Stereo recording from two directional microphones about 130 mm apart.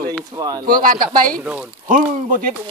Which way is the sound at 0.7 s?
90° right.